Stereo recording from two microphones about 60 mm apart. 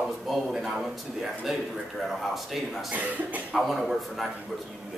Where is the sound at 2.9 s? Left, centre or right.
Right.